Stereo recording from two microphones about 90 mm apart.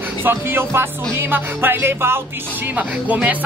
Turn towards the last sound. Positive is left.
turn(degrees=-15)  # may be behind; listen again after turning